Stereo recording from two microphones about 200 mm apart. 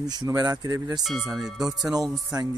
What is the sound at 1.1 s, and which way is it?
Speech, centre (ahead or behind).